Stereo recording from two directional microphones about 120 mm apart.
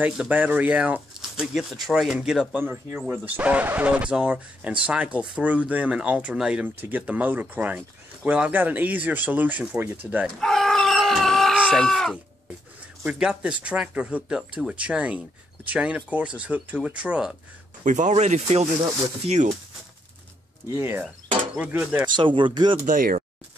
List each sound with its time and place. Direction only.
0.0 s speech: 15° right (ahead or behind)
2.5 s speech: 15° right (ahead or behind)
10.4 s cat: centre (ahead or behind)
13.0 s speech: 5° right (ahead or behind)
17.8 s speech: 90° right; by 19.5 s 70° right (ahead or behind)
20.6 s speech: 25° right (ahead or behind)
21.5 s speech: 10° right (ahead or behind)
22.1 s speech: 45° right (ahead or behind)